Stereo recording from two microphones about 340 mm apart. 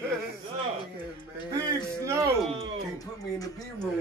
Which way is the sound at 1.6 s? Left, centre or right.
Centre.